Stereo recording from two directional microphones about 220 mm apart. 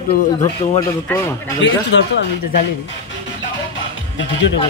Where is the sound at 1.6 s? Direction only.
55° left (ahead or behind).